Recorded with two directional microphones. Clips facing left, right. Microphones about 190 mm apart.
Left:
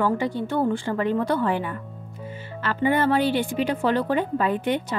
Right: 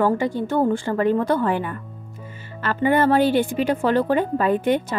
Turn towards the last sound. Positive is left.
turn(degrees=-45)  # may be behind; listen again after turning